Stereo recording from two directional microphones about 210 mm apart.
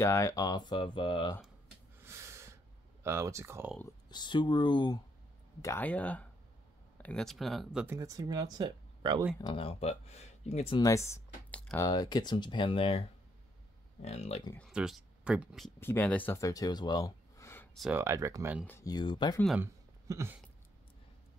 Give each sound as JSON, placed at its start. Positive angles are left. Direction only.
{"t": 0.0, "sound": "speech", "side_deg": 15}
{"t": 2.0, "sound": "a sound", "side_deg": -10}
{"t": 4.1, "sound": "speech", "side_deg": 20}
{"t": 5.6, "sound": "speech", "side_deg": 10}
{"t": 9.4, "sound": "speech", "side_deg": 25}
{"t": 14.0, "sound": "speech", "side_deg": 30}
{"t": 14.7, "sound": "speech", "side_deg": -5}
{"t": 15.8, "sound": "speech", "side_deg": 10}
{"t": 17.7, "sound": "speech", "side_deg": -5}
{"t": 18.7, "sound": "speech", "side_deg": 15}
{"t": 19.6, "sound": "a sound", "side_deg": -10}